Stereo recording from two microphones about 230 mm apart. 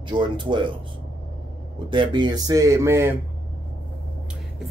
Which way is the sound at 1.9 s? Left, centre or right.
Centre.